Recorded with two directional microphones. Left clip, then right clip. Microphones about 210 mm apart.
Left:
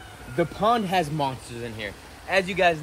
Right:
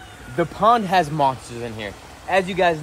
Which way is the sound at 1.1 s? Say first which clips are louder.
Right 8 dB; 50° right (ahead or behind).